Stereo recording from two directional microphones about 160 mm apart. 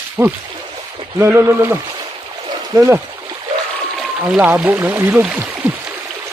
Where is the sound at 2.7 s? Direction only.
20° right (ahead or behind).